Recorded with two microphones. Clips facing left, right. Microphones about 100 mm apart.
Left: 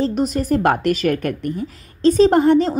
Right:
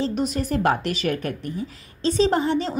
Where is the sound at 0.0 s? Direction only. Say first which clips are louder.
Left 5 dB; 45° left (ahead or behind).